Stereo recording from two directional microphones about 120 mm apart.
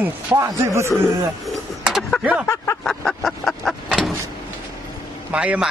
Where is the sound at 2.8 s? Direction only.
Centre (ahead or behind).